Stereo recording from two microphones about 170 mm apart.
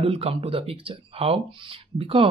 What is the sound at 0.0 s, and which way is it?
Speech, 35° right (ahead or behind).